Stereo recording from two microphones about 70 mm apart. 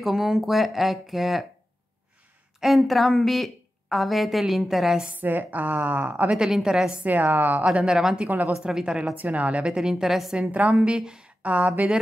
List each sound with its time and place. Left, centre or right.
0.0 s a woman's voice: centre
2.6 s a woman's voice: centre
5.1 s a woman's voice: right
6.3 s speech: centre
7.1 s speech: right; by 8.3 s centre
8.3 s a woman's voice: right
8.6 s speech: centre
9.1 s speech: right; by 10.3 s centre
10.3 s speech: centre
11.4 s a woman's voice: right